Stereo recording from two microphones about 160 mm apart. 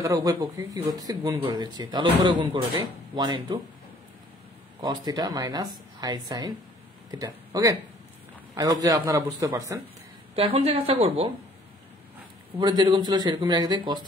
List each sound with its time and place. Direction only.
0.0 s speech: 20° right (ahead or behind)
4.8 s speech: 25° right (ahead or behind)
10.3 s a woman's voice: 40° right (ahead or behind)
12.5 s speech: 30° right (ahead or behind)